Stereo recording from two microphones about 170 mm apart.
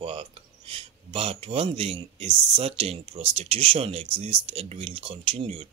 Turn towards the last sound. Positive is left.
turn(degrees=-30)  # may be behind; listen again after turning